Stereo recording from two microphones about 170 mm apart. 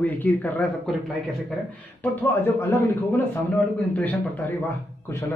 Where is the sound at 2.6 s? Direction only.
15° left (ahead or behind).